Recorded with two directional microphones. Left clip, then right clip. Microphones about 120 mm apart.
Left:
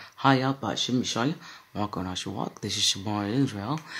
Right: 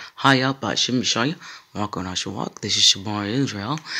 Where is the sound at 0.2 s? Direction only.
25° right (ahead or behind).